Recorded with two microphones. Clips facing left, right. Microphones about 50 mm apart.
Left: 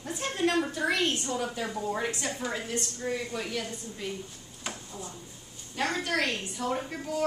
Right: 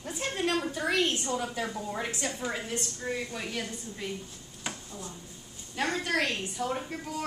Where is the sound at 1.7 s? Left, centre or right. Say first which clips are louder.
Left 3 dB; centre.